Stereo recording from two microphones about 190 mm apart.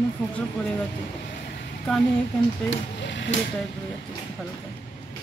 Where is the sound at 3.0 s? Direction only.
70° left (ahead or behind).